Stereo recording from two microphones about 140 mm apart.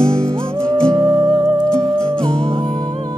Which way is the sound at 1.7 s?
5° left (ahead or behind).